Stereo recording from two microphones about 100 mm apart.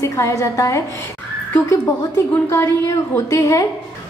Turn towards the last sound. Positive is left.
turn(degrees=30)  # may be behind; listen again after turning